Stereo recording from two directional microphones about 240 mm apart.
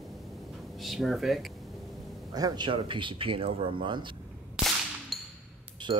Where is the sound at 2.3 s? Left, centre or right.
Centre.